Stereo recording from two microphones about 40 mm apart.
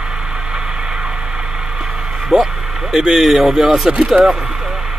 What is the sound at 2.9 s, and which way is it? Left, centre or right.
Speech, centre.